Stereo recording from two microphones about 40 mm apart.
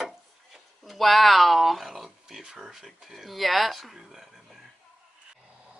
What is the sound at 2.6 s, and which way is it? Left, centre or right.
Speech, centre.